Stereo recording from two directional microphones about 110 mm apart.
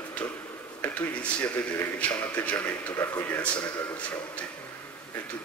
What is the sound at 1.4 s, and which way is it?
A man's voice, 15° left (ahead or behind).